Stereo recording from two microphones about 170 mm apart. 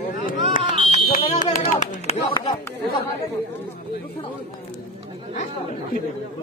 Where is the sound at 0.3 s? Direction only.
55° left (ahead or behind).